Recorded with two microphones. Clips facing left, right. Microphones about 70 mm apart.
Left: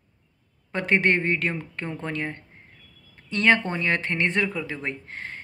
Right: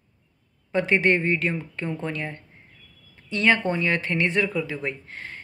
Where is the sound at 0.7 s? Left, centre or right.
Left.